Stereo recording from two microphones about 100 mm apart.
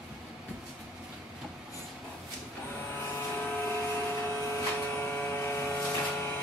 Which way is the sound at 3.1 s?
20° left (ahead or behind).